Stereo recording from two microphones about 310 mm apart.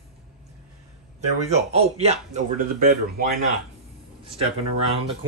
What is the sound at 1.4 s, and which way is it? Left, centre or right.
Speech, right.